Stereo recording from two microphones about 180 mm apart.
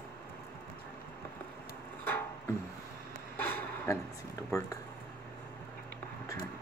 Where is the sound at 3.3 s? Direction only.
10° left (ahead or behind).